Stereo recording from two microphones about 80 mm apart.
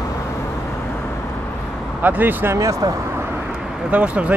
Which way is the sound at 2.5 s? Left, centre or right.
Right.